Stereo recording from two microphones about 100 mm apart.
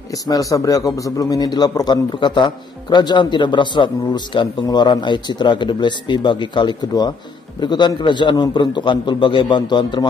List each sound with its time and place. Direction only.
0.3 s a man's voice: 35° left (ahead or behind)